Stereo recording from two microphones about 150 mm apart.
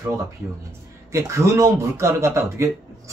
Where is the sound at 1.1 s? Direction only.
20° right (ahead or behind).